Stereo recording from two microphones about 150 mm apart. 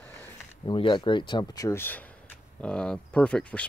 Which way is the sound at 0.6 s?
30° left (ahead or behind).